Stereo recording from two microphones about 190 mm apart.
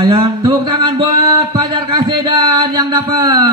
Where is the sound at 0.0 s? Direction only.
25° right (ahead or behind).